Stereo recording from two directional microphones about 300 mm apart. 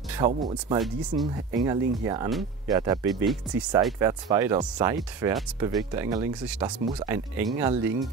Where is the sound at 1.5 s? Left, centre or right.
Centre.